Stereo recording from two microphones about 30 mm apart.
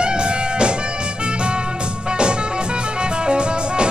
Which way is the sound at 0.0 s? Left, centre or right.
Right.